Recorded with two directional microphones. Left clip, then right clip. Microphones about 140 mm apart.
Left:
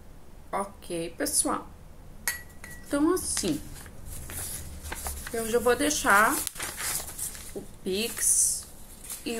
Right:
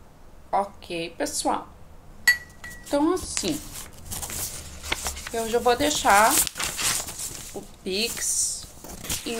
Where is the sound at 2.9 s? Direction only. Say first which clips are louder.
Right 3 dB; 45° left (ahead or behind).